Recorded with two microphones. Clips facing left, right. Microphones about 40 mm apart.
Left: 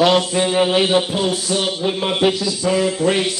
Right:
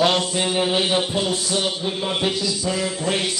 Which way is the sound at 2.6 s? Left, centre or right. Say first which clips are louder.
Left 11 dB; left.